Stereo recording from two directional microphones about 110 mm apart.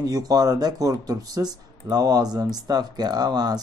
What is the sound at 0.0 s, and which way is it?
Speech, 35° right (ahead or behind).